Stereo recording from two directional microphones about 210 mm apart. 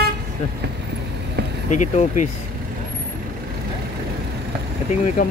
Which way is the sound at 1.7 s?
35° left (ahead or behind).